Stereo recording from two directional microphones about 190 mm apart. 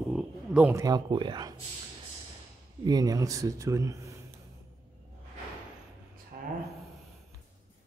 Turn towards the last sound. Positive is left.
turn(degrees=-50)  # may be behind; listen again after turning